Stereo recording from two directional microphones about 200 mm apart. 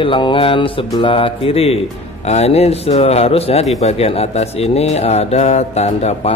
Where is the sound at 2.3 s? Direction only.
30° left (ahead or behind).